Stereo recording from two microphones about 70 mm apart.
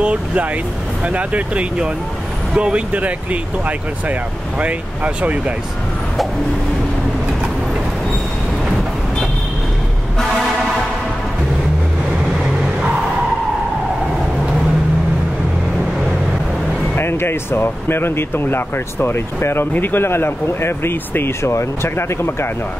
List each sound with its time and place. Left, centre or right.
0.0 s speech: centre
16.9 s speech: left